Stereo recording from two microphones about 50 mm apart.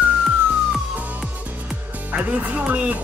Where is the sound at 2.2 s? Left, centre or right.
Right.